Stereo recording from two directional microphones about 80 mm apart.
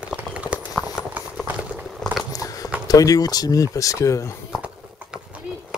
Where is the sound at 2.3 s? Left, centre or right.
Left.